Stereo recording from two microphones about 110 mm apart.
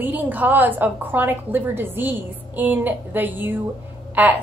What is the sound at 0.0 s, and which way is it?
A woman's voice, 15° right (ahead or behind).